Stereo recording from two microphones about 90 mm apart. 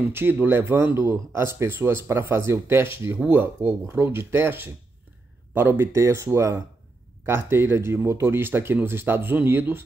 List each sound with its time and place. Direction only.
0.0 s speech: 25° right (ahead or behind)